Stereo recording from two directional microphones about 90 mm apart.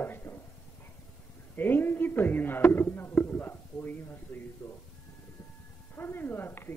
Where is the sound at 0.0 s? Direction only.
25° left (ahead or behind).